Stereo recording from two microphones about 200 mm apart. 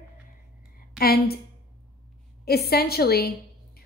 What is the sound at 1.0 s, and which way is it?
Speech, 50° left (ahead or behind).